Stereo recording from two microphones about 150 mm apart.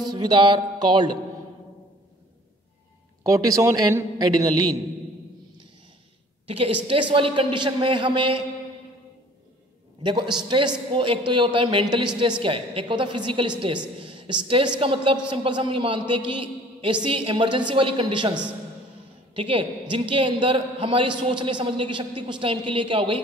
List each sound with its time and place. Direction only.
0.1 s a woman's voice: 30° right (ahead or behind)
3.3 s a woman's voice: 20° right (ahead or behind)
6.4 s a woman's voice: 35° right (ahead or behind)
10.0 s a woman's voice: 30° right (ahead or behind)
19.3 s a woman's voice: 35° right (ahead or behind)